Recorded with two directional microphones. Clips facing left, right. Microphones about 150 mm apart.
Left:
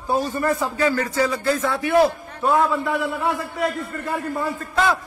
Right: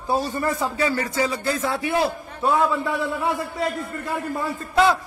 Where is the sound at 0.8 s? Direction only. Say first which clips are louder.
Left 4 dB; 25° right (ahead or behind).